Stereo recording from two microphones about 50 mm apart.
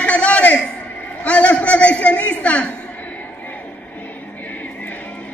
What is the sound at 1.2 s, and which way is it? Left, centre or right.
A man's voice, left.